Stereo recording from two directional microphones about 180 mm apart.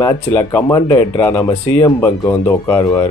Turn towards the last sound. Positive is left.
turn(degrees=20)  # may be behind; listen again after turning